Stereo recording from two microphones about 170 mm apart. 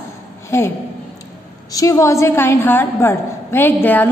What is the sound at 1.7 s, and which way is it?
A woman's voice, 20° left (ahead or behind).